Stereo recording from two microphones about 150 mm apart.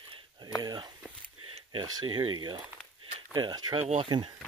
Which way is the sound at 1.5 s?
30° right (ahead or behind).